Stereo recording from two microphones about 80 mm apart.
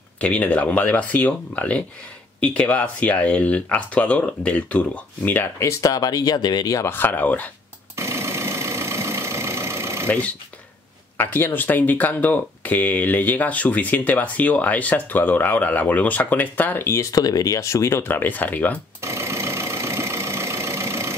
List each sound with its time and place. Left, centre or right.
0.2 s speech: centre
5.6 s speech: left
6.8 s speech: left
7.9 s engine: right
11.1 s speech: left
17.1 s speech: left
18.9 s vehicle: right